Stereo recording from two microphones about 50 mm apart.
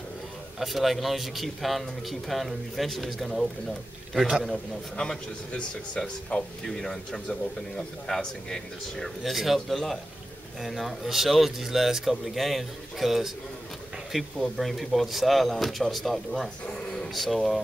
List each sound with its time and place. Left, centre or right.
0.6 s a man's voice: centre
4.9 s speech: centre
9.2 s speech: centre
16.6 s a sound: centre
17.1 s speech: centre